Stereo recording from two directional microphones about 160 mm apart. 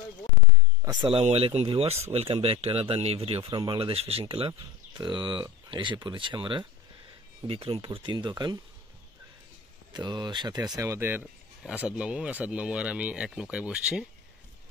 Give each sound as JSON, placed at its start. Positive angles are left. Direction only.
{"t": 1.0, "sound": "speech", "side_deg": -40}
{"t": 9.9, "sound": "speech", "side_deg": -25}